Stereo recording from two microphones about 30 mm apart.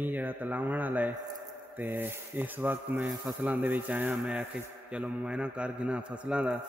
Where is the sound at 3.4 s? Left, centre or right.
Right.